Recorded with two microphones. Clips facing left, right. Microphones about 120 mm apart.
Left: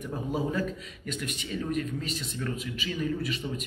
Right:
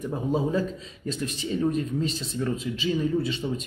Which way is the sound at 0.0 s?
25° right (ahead or behind).